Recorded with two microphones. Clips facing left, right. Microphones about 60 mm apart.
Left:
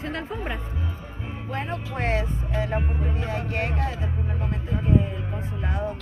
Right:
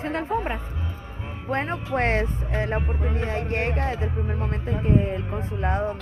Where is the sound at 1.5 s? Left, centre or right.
Right.